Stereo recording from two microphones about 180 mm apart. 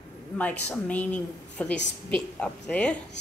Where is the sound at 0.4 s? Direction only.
10° left (ahead or behind).